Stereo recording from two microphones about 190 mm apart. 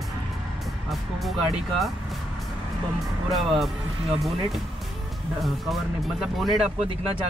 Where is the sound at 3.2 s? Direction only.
Centre (ahead or behind).